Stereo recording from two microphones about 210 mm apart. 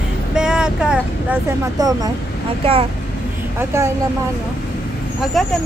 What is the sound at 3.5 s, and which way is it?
Speech, 15° right (ahead or behind).